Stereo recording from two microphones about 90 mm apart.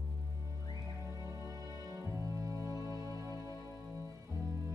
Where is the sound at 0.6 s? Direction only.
45° left (ahead or behind).